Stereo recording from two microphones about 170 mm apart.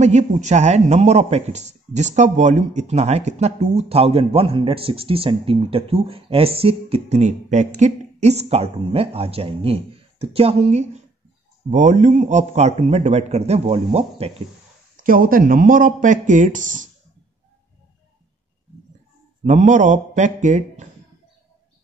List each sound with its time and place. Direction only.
0.0 s speech: 45° right (ahead or behind)
15.0 s speech: 55° right (ahead or behind)
19.4 s a man's voice: 45° right (ahead or behind)